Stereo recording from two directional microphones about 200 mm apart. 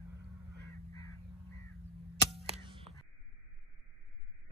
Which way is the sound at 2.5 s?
25° right (ahead or behind).